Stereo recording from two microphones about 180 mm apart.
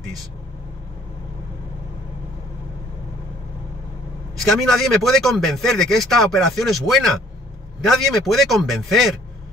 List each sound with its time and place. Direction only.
4.4 s speech: centre (ahead or behind)